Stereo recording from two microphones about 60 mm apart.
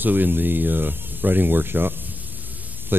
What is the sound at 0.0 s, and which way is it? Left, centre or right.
Speech, right.